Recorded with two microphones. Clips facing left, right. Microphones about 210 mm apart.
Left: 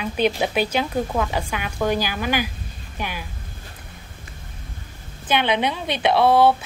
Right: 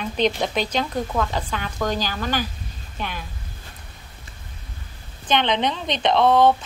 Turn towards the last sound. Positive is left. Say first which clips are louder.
# even
turn(degrees=10)  # may be behind; listen again after turning